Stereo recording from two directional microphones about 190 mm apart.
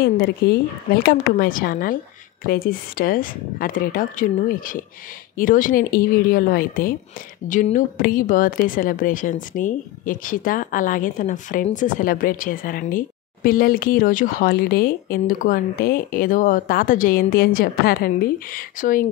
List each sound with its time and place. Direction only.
0.0 s speech: 55° left (ahead or behind)